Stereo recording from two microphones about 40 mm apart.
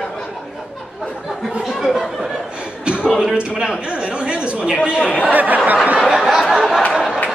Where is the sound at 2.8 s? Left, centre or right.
Right.